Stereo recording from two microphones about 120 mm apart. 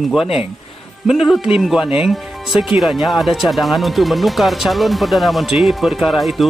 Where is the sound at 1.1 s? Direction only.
Centre (ahead or behind).